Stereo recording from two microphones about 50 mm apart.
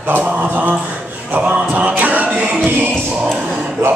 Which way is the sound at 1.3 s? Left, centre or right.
Right.